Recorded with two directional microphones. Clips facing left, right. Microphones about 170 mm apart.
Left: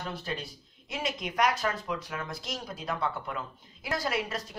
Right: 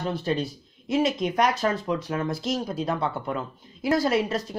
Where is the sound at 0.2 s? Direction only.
25° right (ahead or behind).